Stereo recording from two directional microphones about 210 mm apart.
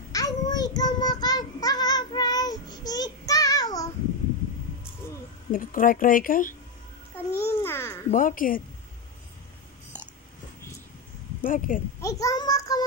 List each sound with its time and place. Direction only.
0.1 s child singing: 20° left (ahead or behind)
5.5 s speech: 40° left (ahead or behind)
7.3 s babbling: 10° left (ahead or behind)
8.1 s speech: 40° left (ahead or behind)
11.4 s speech: 40° left (ahead or behind)
12.0 s child singing: 15° left (ahead or behind)